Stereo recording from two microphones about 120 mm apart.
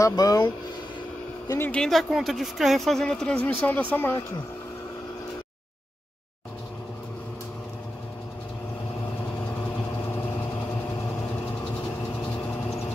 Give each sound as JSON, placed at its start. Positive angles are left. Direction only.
{"t": 0.0, "sound": "speech", "side_deg": 30}
{"t": 1.6, "sound": "speech", "side_deg": 10}